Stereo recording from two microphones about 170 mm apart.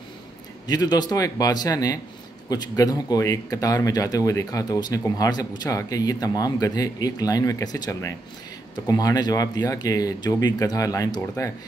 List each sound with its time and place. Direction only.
0.7 s speech: 25° left (ahead or behind)